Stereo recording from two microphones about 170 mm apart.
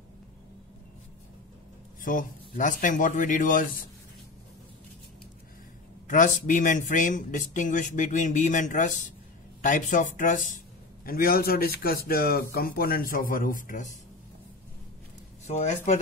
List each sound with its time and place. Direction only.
2.0 s speech: 50° left (ahead or behind)
6.0 s speech: 50° left (ahead or behind)
15.4 s speech: 40° left (ahead or behind)